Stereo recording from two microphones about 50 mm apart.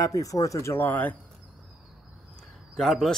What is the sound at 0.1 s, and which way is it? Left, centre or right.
Speech, left.